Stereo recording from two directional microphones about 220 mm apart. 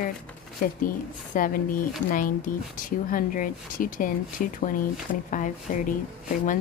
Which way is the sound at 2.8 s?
40° left (ahead or behind).